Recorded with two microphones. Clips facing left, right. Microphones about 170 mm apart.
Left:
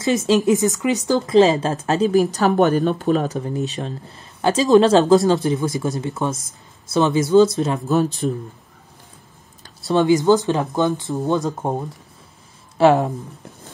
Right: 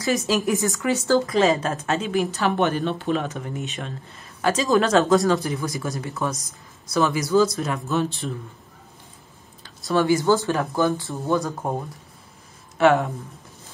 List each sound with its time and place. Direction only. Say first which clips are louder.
0.5 s speech: left 5 dB; 20° left (ahead or behind)
1.3 s speech: left 5 dB; 30° left (ahead or behind)
8.0 s speech: left 6 dB; 40° left (ahead or behind)
9.9 s speech: left 4 dB; 20° left (ahead or behind)
12.7 s speech: left 3 dB; 30° left (ahead or behind)